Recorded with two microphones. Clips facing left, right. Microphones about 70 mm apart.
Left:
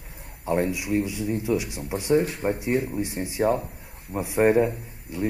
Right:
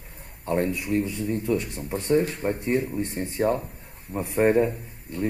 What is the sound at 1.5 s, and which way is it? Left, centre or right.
Speech, left.